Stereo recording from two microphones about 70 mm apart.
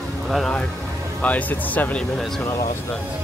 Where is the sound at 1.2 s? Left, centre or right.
Left.